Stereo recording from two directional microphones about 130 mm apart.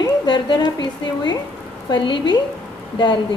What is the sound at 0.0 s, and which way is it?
A woman's voice, 35° left (ahead or behind).